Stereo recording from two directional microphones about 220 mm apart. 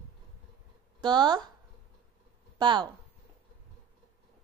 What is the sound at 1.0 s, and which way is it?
Speech, 20° right (ahead or behind).